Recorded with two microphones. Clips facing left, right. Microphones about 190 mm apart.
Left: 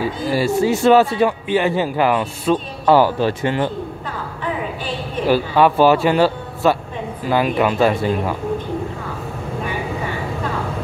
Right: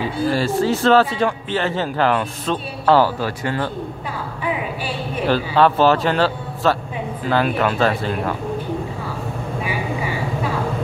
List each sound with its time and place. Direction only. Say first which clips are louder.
0.3 s speech: left 3 dB; 10° left (ahead or behind)
3.2 s speech: left 4 dB; 20° left (ahead or behind)
5.2 s speech: left 1 dB; 10° left (ahead or behind)